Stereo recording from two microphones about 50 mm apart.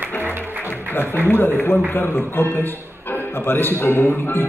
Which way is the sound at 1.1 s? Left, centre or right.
Left.